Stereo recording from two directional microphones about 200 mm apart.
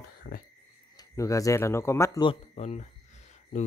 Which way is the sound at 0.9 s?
15° left (ahead or behind).